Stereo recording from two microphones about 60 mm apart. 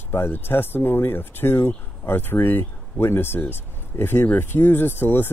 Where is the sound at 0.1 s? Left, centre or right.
Left.